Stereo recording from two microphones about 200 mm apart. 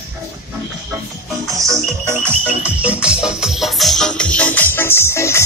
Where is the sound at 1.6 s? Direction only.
15° right (ahead or behind); by 5.4 s 15° left (ahead or behind).